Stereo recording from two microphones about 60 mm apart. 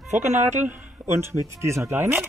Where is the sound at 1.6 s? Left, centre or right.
Right.